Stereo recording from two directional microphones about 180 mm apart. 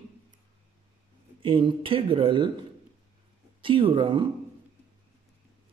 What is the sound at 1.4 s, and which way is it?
Speech, 30° right (ahead or behind).